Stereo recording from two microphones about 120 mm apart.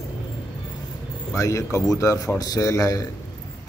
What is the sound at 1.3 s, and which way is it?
Speech, 25° left (ahead or behind).